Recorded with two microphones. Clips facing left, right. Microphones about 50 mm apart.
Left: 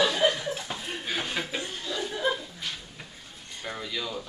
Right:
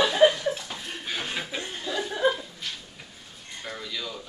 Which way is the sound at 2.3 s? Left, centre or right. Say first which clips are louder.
Even; centre.